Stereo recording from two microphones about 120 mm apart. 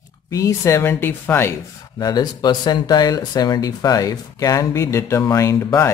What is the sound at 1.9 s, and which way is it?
Speech, 35° left (ahead or behind).